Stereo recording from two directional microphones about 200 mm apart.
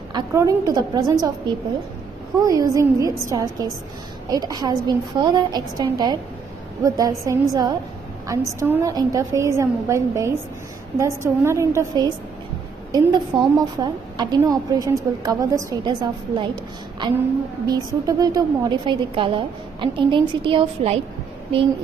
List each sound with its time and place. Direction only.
0.1 s a woman's voice: 15° right (ahead or behind)
2.4 s a woman's voice: 15° right (ahead or behind)
17.6 s a woman's voice: 20° right (ahead or behind)